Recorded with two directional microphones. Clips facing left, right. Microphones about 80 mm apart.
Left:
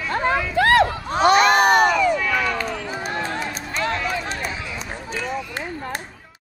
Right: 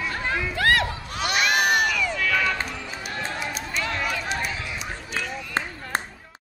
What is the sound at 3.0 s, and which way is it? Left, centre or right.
Run, left.